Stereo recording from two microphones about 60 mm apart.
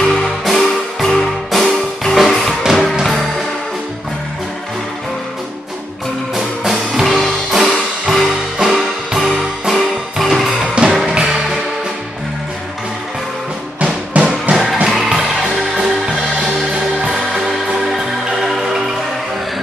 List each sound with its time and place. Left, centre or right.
0.0 s music: centre
6.3 s music: centre
7.0 s music: centre
13.7 s music: right
14.5 s music: centre
17.0 s music: centre